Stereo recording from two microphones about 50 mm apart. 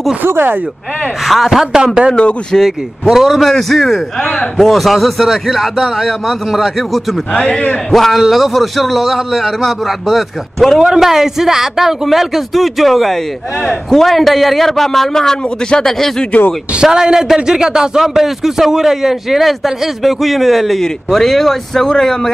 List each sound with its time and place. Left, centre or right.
0.2 s speech: right
1.2 s a man's voice: centre
2.5 s a man's voice: centre
3.1 s a man's voice: centre
7.3 s a man's voice: centre
7.9 s a man's voice: centre
10.8 s a man's voice: centre
16.3 s speech: left
16.7 s a man's voice: centre